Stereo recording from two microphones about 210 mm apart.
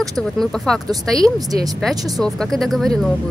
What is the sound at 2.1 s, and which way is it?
Speech, centre (ahead or behind).